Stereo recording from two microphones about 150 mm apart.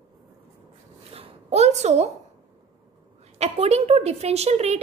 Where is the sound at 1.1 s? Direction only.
45° right (ahead or behind).